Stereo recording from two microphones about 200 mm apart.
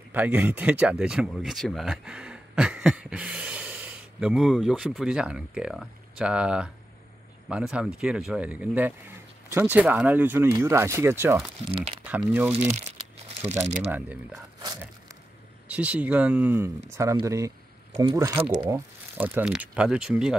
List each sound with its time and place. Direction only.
0.1 s speech: 10° right (ahead or behind)
11.6 s speech: 30° right (ahead or behind)
12.3 s speech: 5° right (ahead or behind)
13.9 s speech: 10° right (ahead or behind)
14.6 s a sound: 20° right (ahead or behind)
15.7 s speech: 5° right (ahead or behind)